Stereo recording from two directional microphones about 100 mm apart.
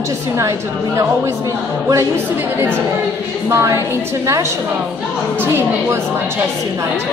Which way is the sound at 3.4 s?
30° right (ahead or behind).